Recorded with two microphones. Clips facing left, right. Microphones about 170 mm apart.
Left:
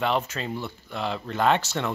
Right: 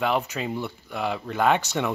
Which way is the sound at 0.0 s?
10° right (ahead or behind).